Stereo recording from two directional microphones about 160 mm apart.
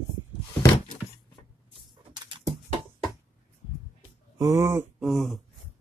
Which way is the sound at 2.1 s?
30° right (ahead or behind).